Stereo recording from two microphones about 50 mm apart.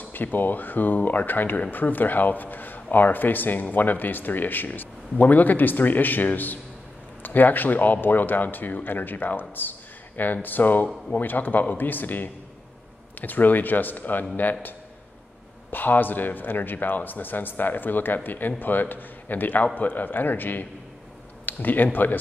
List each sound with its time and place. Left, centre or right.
0.1 s speech: left
15.7 s speech: left